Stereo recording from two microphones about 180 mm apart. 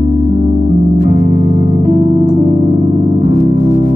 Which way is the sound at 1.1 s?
40° right (ahead or behind).